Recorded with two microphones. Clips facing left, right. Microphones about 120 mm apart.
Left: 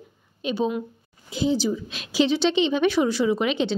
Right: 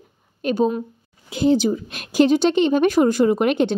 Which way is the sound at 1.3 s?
55° right (ahead or behind).